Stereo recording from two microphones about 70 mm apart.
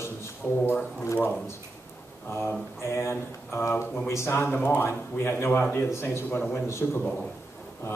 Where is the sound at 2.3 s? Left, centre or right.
Left.